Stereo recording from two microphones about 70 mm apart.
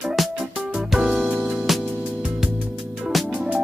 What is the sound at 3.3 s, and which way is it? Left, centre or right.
Music, centre.